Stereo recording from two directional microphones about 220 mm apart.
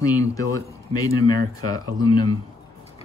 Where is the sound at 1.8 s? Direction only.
20° left (ahead or behind).